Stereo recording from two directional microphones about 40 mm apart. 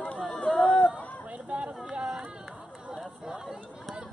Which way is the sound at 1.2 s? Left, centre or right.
Right.